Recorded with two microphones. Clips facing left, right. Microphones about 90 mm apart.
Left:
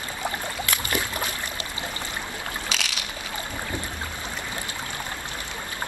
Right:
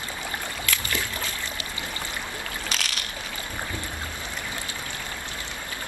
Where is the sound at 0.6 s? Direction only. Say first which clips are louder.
Left 3 dB; 20° left (ahead or behind).